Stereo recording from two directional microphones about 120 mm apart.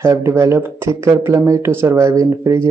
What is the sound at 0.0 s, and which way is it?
Speech, 25° right (ahead or behind).